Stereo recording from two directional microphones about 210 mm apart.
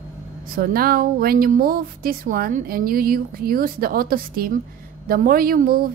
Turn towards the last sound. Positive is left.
turn(degrees=-45)  # may be behind; listen again after turning